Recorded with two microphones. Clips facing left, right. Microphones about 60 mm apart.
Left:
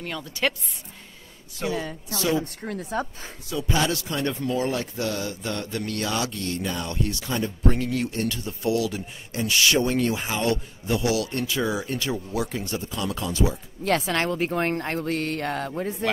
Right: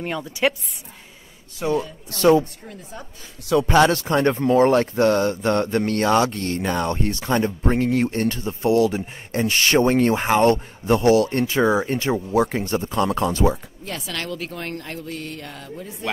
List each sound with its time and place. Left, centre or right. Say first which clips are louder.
0.0 s a woman's voice: right 5 dB; centre
2.0 s a woman's voice: right 10 dB; right
2.6 s a woman's voice: left 9 dB; left
3.4 s speech: right 9 dB; right
14.0 s speech: left 5 dB; left